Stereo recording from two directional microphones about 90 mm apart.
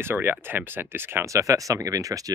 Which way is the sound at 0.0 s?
25° right (ahead or behind).